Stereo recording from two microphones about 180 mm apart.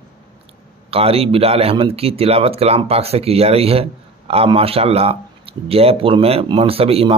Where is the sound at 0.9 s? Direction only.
35° right (ahead or behind).